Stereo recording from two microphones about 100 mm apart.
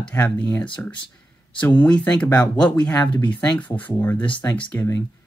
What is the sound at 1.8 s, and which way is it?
Speech, 10° left (ahead or behind).